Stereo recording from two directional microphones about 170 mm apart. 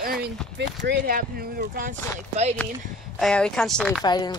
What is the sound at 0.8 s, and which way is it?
Speech, 55° right (ahead or behind).